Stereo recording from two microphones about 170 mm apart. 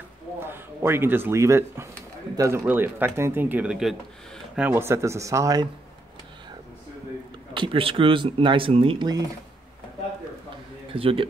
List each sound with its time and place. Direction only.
0.4 s speech: 15° right (ahead or behind)
7.5 s speech: 30° right (ahead or behind)
10.9 s a man's voice: 30° right (ahead or behind)